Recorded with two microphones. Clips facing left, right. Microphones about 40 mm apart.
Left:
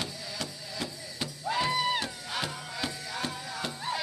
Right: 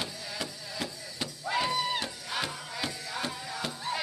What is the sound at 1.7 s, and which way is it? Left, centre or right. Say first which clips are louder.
Music: left 2 dB; centre.